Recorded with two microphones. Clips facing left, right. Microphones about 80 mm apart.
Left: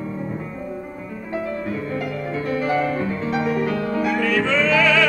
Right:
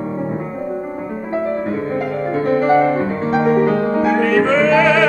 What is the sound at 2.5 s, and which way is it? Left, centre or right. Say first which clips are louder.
Music: right 8 dB; right.